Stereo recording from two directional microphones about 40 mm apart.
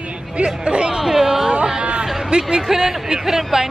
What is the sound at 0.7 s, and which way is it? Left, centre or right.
Speech, right.